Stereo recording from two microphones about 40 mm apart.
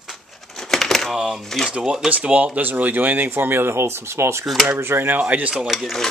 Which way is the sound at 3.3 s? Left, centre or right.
Right.